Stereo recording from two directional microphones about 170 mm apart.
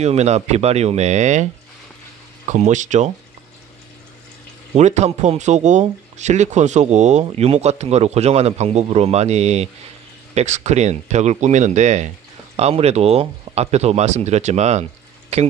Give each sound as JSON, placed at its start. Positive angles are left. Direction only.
{"t": 0.0, "sound": "speech", "side_deg": -40}
{"t": 4.7, "sound": "speech", "side_deg": -40}